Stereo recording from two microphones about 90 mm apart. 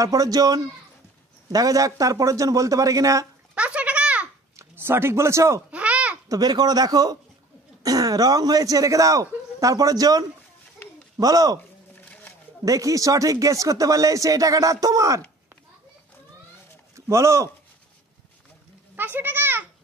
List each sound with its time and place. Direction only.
0.0 s speech: 40° right (ahead or behind)
3.5 s a sound: 15° right (ahead or behind)
4.6 s speech: 25° right (ahead or behind)
5.7 s babbling: 15° right (ahead or behind)
6.2 s speech: 40° right (ahead or behind)
11.9 s a sound: 15° left (ahead or behind)
12.6 s speech: 40° right (ahead or behind)
16.9 s speech: 35° right (ahead or behind)
18.9 s a sound: 20° right (ahead or behind)